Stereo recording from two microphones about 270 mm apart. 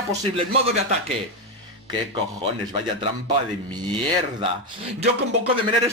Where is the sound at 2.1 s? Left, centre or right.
Centre.